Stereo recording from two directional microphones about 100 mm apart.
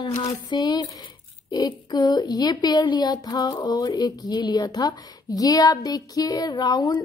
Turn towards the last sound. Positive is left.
turn(degrees=45)  # may be behind; listen again after turning